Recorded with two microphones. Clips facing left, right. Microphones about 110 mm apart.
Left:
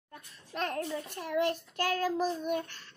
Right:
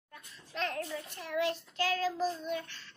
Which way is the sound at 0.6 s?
50° left (ahead or behind).